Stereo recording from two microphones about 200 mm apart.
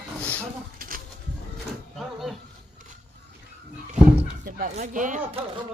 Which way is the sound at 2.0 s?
Centre (ahead or behind).